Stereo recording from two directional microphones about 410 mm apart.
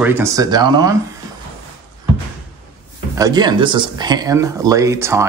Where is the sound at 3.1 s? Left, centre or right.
Centre.